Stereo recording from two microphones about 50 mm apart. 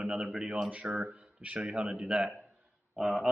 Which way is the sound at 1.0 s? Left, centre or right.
Right.